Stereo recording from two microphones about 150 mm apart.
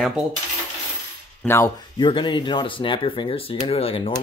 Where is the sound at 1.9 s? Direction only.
30° left (ahead or behind).